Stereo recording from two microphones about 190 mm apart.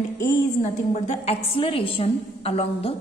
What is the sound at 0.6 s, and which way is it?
A woman's voice, 40° left (ahead or behind).